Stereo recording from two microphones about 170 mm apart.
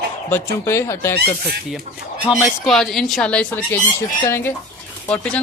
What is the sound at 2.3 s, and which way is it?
Speech, centre (ahead or behind).